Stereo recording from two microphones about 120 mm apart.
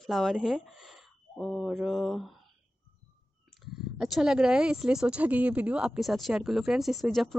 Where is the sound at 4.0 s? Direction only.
5° right (ahead or behind).